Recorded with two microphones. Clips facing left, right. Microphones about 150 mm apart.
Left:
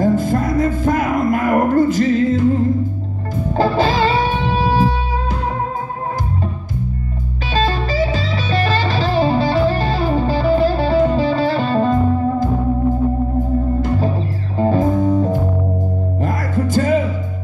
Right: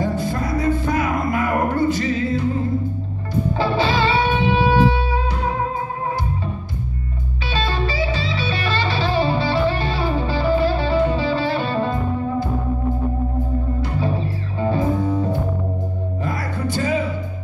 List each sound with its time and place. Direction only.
0.0 s music: 45° left (ahead or behind)
3.5 s music: 45° left (ahead or behind)
7.4 s music: 45° left (ahead or behind)
13.7 s music: 45° left (ahead or behind)